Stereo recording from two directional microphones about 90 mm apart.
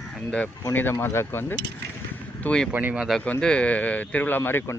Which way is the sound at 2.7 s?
20° right (ahead or behind).